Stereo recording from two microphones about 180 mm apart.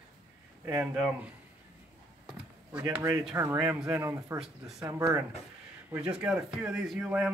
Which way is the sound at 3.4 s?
15° right (ahead or behind).